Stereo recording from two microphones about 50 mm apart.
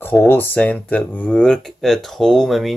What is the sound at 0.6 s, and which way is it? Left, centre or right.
Speech, left.